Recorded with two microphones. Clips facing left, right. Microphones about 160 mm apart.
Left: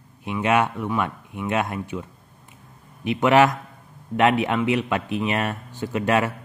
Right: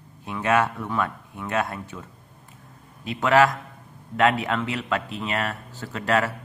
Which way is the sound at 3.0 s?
20° left (ahead or behind).